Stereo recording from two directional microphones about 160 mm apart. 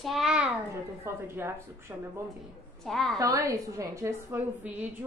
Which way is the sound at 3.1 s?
20° right (ahead or behind).